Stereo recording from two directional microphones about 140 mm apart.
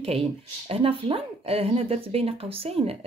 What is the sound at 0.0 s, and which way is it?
Speech, 45° right (ahead or behind).